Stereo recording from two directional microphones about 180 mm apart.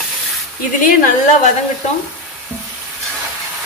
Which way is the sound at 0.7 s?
45° left (ahead or behind).